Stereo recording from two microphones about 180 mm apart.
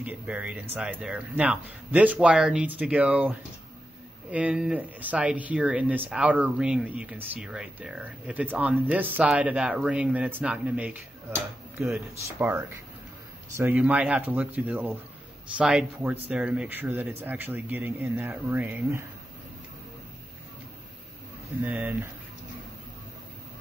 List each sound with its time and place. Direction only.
0.0 s speech: 5° right (ahead or behind)
21.6 s speech: 10° right (ahead or behind)